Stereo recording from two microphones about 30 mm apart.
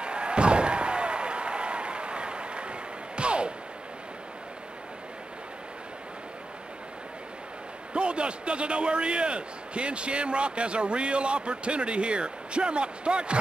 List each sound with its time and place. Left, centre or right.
0.0 s slam: right
7.9 s a man's voice: right